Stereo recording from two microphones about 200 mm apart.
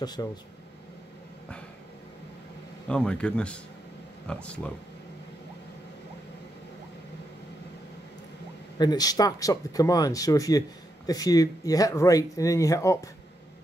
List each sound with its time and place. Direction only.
0.0 s speech: 20° left (ahead or behind)
2.9 s speech: 5° left (ahead or behind)
8.7 s speech: 20° left (ahead or behind)